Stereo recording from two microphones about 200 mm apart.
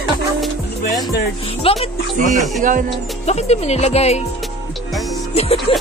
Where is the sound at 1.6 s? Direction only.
30° left (ahead or behind).